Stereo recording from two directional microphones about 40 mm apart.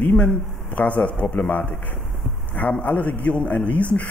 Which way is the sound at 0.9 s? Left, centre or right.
Left.